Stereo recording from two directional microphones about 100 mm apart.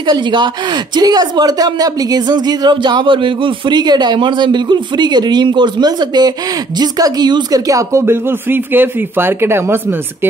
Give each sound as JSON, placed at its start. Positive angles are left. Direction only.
{"t": 0.0, "sound": "a woman's voice", "side_deg": -50}
{"t": 7.6, "sound": "speech", "side_deg": -35}
{"t": 8.0, "sound": "speech", "side_deg": -20}